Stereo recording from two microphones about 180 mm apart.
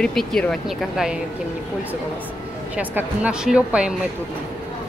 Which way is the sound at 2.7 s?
10° right (ahead or behind).